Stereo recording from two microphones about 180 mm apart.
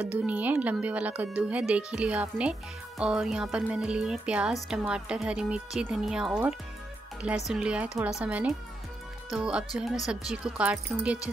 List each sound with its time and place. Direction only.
0.3 s a woman's voice: 10° right (ahead or behind)